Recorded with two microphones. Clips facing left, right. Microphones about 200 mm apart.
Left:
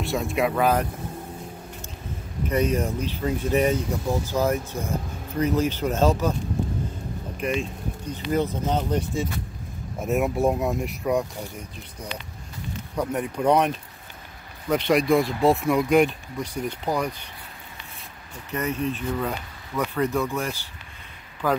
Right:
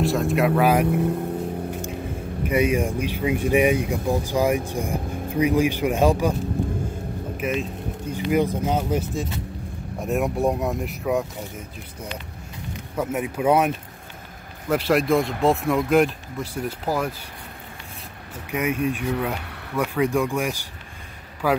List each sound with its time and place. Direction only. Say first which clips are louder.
0.0 s speech: right 4 dB; centre (ahead or behind)
0.8 s speech: right 14 dB; 65° right (ahead or behind)
2.4 s speech: right 2 dB; 10° right (ahead or behind)
7.3 s speech: even; 5° right (ahead or behind)
18.5 s speech: right 3 dB; 10° right (ahead or behind)